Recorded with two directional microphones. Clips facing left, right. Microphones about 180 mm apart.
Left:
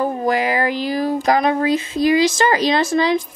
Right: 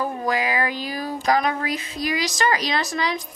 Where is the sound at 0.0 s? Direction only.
30° left (ahead or behind).